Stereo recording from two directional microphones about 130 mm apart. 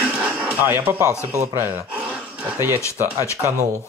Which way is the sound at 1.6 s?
20° right (ahead or behind).